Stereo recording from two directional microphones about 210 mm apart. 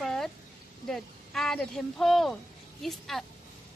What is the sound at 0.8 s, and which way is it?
A woman's voice, centre (ahead or behind).